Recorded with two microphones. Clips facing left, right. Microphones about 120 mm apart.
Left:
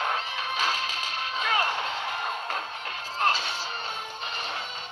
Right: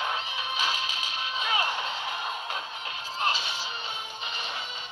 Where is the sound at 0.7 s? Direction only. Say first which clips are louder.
Left 2 dB; 10° right (ahead or behind).